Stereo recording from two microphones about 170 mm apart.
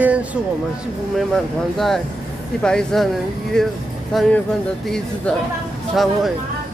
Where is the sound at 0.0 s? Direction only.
10° right (ahead or behind).